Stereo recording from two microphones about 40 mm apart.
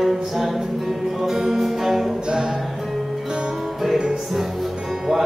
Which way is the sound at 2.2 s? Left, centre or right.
Centre.